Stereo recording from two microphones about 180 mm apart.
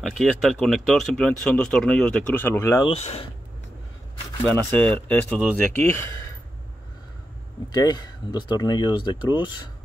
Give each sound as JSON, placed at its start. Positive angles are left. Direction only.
{"t": 0.0, "sound": "speech", "side_deg": 0}
{"t": 2.9, "sound": "speech", "side_deg": 35}
{"t": 4.5, "sound": "speech", "side_deg": 5}
{"t": 7.7, "sound": "speech", "side_deg": 20}